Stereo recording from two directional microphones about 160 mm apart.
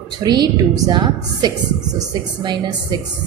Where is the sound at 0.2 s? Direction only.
25° right (ahead or behind).